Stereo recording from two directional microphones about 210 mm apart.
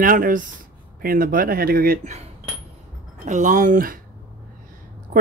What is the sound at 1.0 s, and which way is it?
Speech, 45° right (ahead or behind).